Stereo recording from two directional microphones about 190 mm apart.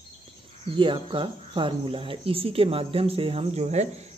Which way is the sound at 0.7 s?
25° right (ahead or behind).